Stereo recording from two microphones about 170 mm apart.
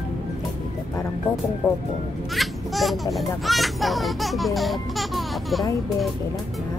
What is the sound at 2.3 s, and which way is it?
Speech, centre (ahead or behind).